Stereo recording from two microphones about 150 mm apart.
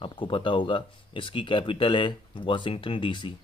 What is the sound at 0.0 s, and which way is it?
Speech, 35° left (ahead or behind).